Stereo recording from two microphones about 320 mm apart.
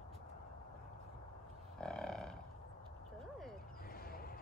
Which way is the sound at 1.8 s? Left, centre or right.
Centre.